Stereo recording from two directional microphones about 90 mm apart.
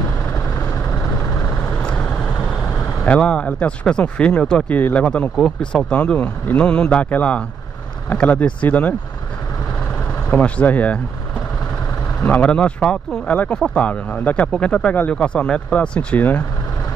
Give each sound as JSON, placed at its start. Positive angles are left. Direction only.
{"t": 0.3, "sound": "vehicle", "side_deg": 30}
{"t": 1.6, "sound": "vehicle", "side_deg": 15}
{"t": 3.0, "sound": "speech", "side_deg": 10}
{"t": 10.3, "sound": "speech", "side_deg": 15}
{"t": 12.2, "sound": "speech", "side_deg": 15}